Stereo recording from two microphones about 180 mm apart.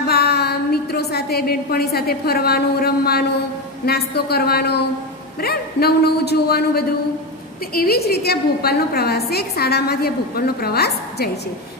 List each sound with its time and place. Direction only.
0.0 s a woman's voice: 60° left (ahead or behind)